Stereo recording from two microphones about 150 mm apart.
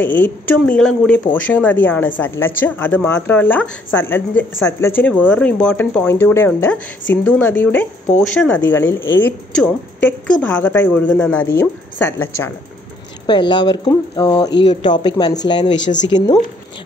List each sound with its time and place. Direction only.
0.0 s speech: 10° left (ahead or behind)
13.3 s speech: 30° left (ahead or behind)